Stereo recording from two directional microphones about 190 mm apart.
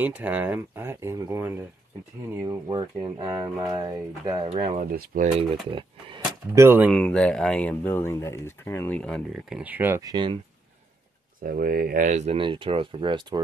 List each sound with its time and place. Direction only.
0.0 s speech: 10° right (ahead or behind)
2.4 s speech: 25° right (ahead or behind)
3.3 s speech: 15° right (ahead or behind)
4.5 s speech: 30° right (ahead or behind)
4.9 s speech: 50° right (ahead or behind)
5.7 s speech: 25° right (ahead or behind)
6.5 s speech: 15° right (ahead or behind)
6.9 s speech: 5° left (ahead or behind); by 10.4 s 25° right (ahead or behind)
11.4 s speech: 50° right (ahead or behind); by 13.4 s 25° right (ahead or behind)